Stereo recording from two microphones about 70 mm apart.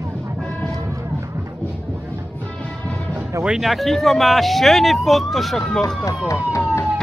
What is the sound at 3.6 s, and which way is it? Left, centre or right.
Speech, centre.